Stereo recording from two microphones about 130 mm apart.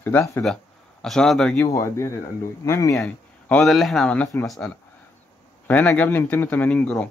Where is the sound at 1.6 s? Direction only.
25° left (ahead or behind).